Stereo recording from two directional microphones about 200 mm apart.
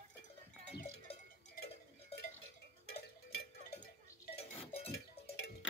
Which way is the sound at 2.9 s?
50° left (ahead or behind).